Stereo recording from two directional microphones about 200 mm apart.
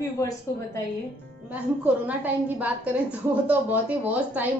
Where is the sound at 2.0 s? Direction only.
10° right (ahead or behind).